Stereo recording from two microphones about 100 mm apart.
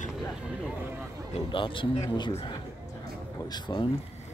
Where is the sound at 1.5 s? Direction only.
60° left (ahead or behind).